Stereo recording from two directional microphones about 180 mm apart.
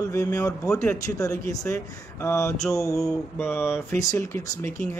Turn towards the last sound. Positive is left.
turn(degrees=15)  # may be behind; listen again after turning